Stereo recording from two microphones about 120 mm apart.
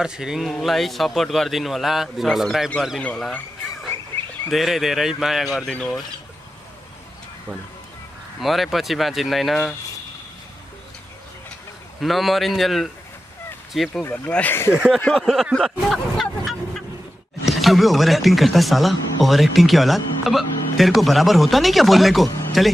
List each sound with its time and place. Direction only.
0.0 s a man's voice: 5° right (ahead or behind)
3.0 s speech: 10° left (ahead or behind)
3.9 s a sound: 20° left (ahead or behind)
4.5 s a man's voice: centre (ahead or behind)
8.4 s a man's voice: centre (ahead or behind)
12.0 s a man's voice: centre (ahead or behind)
14.1 s speech: 10° left (ahead or behind)
14.7 s speech: 5° right (ahead or behind)
15.1 s a sound: centre (ahead or behind)
17.5 s a man's voice: centre (ahead or behind)